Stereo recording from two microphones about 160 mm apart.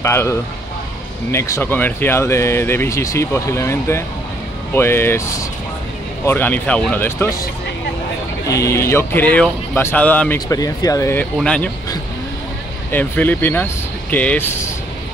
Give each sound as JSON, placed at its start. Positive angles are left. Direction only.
{"t": 0.0, "sound": "speech", "side_deg": 15}
{"t": 8.5, "sound": "speech", "side_deg": 20}
{"t": 10.5, "sound": "speech", "side_deg": 20}
{"t": 11.3, "sound": "speech", "side_deg": 5}
{"t": 12.9, "sound": "speech", "side_deg": 10}